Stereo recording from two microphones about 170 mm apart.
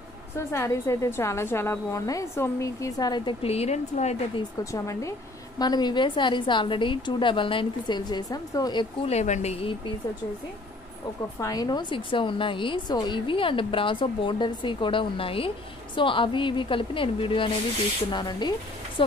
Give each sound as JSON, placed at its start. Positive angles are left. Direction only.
{"t": 0.5, "sound": "a woman's voice", "side_deg": 15}
{"t": 4.4, "sound": "a woman's voice", "side_deg": 20}
{"t": 9.0, "sound": "speech", "side_deg": 40}
{"t": 11.3, "sound": "a woman's voice", "side_deg": 20}